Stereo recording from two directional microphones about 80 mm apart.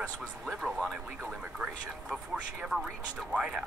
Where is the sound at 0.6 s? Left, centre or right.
Centre.